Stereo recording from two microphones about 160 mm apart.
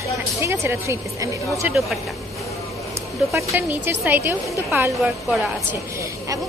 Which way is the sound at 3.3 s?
15° right (ahead or behind).